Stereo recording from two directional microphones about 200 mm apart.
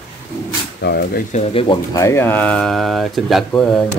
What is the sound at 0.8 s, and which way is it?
Speech, 55° left (ahead or behind).